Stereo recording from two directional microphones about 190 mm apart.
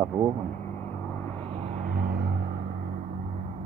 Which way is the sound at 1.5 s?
35° right (ahead or behind).